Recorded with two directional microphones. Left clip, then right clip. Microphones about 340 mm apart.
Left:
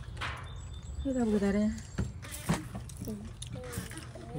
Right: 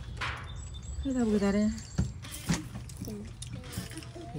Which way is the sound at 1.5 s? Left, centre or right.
Centre.